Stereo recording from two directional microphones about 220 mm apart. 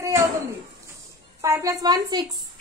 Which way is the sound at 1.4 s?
15° right (ahead or behind).